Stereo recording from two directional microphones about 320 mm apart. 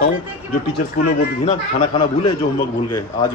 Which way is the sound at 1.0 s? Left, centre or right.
Centre.